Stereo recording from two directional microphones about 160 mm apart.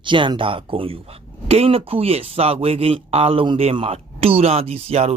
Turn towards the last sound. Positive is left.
turn(degrees=-40)  # may be behind; listen again after turning